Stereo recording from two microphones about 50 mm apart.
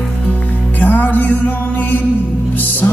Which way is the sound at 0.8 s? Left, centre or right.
Left.